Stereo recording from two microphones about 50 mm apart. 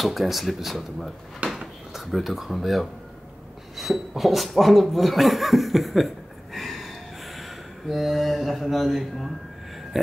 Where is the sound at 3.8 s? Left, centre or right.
Centre.